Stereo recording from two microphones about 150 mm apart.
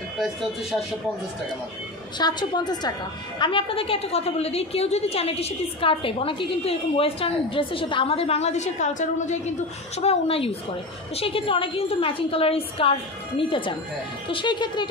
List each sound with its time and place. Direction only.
2.1 s a woman's voice: 30° left (ahead or behind); by 9.4 s 55° left (ahead or behind)
9.9 s a woman's voice: 40° left (ahead or behind)